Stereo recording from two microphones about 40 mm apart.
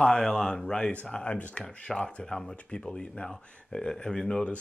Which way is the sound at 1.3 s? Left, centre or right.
Left.